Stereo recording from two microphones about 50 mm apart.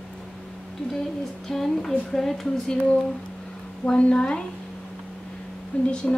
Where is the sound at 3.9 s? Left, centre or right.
Left.